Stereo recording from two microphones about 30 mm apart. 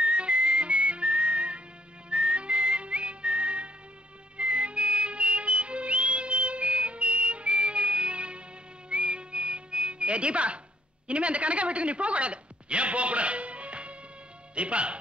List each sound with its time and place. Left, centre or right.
0.0 s music: right
2.0 s whistling: right
4.4 s whistle: right
11.1 s speech: right